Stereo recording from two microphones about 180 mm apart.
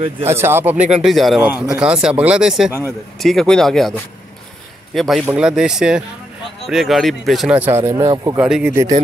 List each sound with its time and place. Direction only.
0.3 s speech: 15° right (ahead or behind)
1.0 s speech: centre (ahead or behind); by 8.4 s 20° right (ahead or behind)
8.4 s speech: 5° right (ahead or behind)